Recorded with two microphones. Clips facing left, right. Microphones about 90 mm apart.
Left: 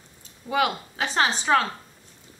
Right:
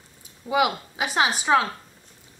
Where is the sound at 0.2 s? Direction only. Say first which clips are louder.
Right 2 dB; 10° right (ahead or behind).